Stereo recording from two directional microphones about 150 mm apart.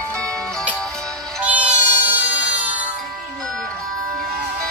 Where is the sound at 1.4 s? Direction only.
10° right (ahead or behind).